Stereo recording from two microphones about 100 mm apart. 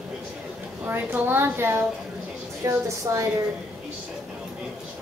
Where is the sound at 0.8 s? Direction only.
20° right (ahead or behind).